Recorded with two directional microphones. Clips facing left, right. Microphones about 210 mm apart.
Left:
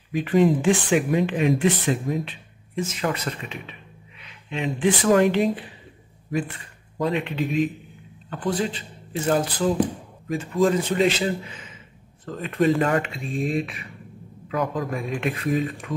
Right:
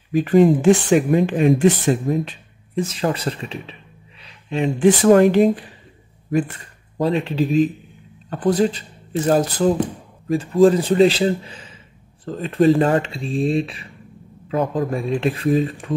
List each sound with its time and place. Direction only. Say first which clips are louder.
0.1 s speech: right 5 dB; 45° right (ahead or behind)
7.0 s speech: right 5 dB; 35° right (ahead or behind)
10.2 s speech: right 7 dB; 30° right (ahead or behind)